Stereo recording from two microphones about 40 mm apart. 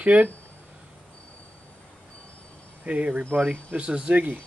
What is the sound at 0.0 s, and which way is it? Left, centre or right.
Speech, right.